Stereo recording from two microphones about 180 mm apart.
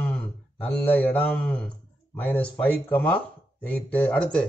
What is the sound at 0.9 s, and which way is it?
Speech, 10° left (ahead or behind).